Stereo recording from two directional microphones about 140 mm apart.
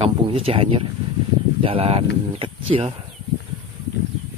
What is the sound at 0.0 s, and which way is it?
Speech, 40° right (ahead or behind).